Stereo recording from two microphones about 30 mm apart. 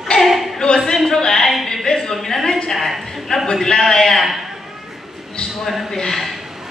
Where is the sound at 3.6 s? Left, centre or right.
Left.